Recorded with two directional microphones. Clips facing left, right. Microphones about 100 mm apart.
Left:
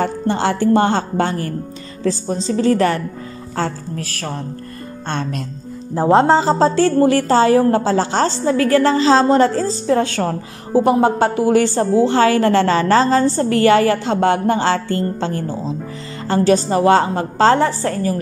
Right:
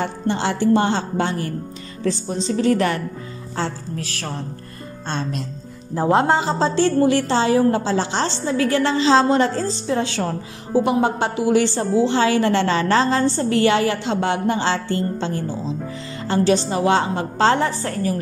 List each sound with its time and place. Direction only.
0.0 s a woman's voice: 45° left (ahead or behind)
2.0 s a woman's voice: 35° left (ahead or behind)
3.5 s a woman's voice: 45° left (ahead or behind)
5.9 s a woman's voice: 30° left (ahead or behind)